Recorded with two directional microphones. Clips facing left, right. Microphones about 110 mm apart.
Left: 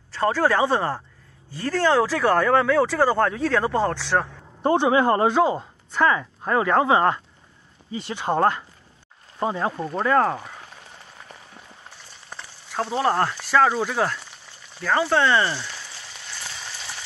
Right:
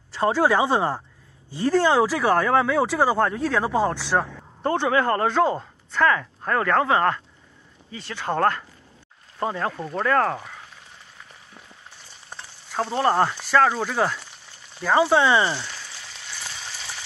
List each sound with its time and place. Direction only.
0.1 s speech: 15° right (ahead or behind)
4.6 s speech: 15° left (ahead or behind)
12.7 s speech: centre (ahead or behind)
14.8 s speech: 10° right (ahead or behind)